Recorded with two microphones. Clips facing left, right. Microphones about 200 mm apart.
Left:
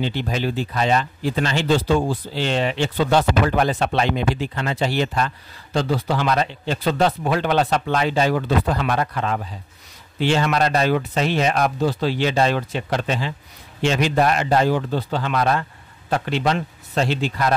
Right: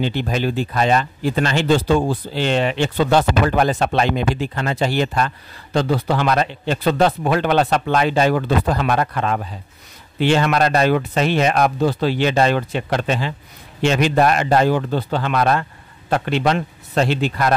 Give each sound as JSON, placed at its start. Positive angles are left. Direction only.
{"t": 0.0, "sound": "speech", "side_deg": -55}
{"t": 8.6, "sound": "speech", "side_deg": -45}